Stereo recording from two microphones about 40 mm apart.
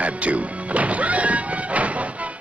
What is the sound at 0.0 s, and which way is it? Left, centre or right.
Music, right.